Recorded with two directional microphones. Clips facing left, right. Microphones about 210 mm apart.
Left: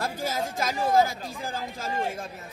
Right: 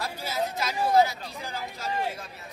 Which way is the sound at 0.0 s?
45° left (ahead or behind).